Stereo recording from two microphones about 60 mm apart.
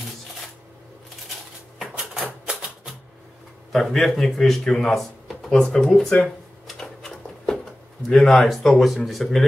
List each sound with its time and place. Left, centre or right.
2.4 s music: centre
3.7 s speech: centre
6.2 s a sound: centre
8.1 s speech: centre